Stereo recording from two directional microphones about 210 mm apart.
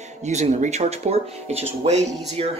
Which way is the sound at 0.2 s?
35° right (ahead or behind).